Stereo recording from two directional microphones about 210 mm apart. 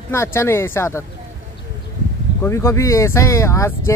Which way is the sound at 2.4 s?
15° left (ahead or behind).